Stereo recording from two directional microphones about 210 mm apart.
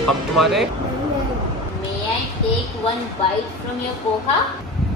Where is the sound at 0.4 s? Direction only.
Centre (ahead or behind).